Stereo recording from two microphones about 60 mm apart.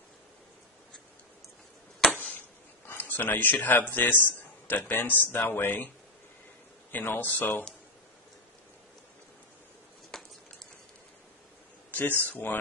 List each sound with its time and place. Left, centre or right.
2.9 s a man's voice: left
6.9 s speech: left
10.1 s a sound: centre
11.9 s speech: left